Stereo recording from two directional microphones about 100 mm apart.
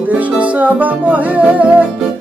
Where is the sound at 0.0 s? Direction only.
15° right (ahead or behind).